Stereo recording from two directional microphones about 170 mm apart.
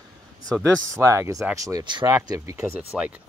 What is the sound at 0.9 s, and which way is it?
Speech, 15° right (ahead or behind).